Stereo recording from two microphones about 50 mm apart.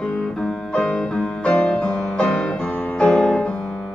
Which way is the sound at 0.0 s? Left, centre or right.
Centre.